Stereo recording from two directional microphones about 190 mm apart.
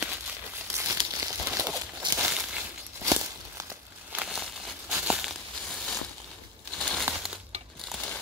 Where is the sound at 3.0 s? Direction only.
15° right (ahead or behind).